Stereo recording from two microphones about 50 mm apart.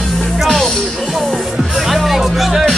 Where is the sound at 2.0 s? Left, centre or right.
Centre.